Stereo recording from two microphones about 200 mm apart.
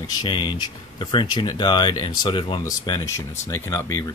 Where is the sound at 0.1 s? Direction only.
20° left (ahead or behind).